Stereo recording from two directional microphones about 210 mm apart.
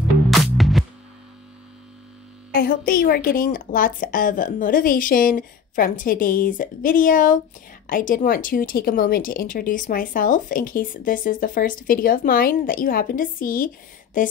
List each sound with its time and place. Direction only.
0.3 s music: centre (ahead or behind)
2.5 s a woman's voice: 45° left (ahead or behind)